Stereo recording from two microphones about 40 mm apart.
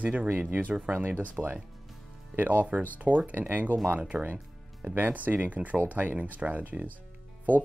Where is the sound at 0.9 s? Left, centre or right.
Right.